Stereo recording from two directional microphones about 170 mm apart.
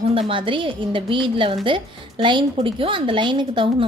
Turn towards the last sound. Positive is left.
turn(degrees=-30)  # may be behind; listen again after turning